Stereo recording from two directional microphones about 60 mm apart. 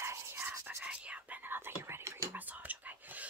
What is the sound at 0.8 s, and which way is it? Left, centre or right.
Whispering, right.